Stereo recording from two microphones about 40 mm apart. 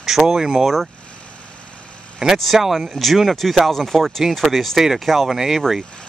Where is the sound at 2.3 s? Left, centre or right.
Centre.